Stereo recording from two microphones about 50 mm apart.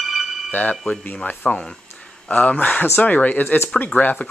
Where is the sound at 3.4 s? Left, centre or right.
Left.